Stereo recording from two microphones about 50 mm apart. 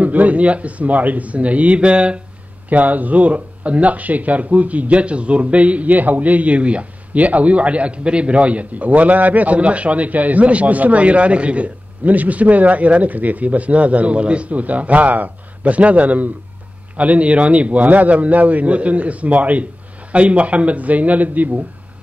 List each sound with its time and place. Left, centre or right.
0.0 s speech: right
2.7 s speech: right